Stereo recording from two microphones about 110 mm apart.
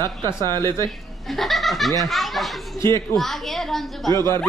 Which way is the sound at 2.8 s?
25° left (ahead or behind).